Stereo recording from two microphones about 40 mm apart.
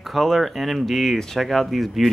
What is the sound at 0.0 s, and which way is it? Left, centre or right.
Speech, centre.